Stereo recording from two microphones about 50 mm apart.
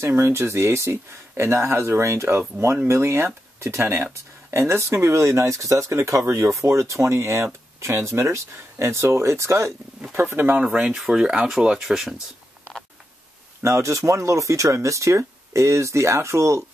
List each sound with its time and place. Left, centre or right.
0.2 s speech: right
10.1 s speech: right
10.6 s speech: centre
11.8 s speech: centre
13.6 s speech: right